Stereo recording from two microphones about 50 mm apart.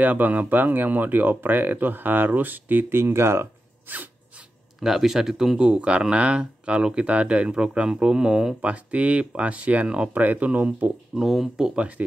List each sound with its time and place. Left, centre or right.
0.0 s speech: right
3.0 s speech: right
4.8 s speech: centre
8.5 s speech: right
9.8 s speech: centre
10.1 s speech: right
11.1 s speech: centre